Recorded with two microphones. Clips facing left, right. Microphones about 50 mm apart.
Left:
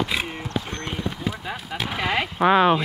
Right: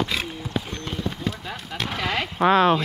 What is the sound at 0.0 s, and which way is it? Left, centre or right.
Clip-clop, centre.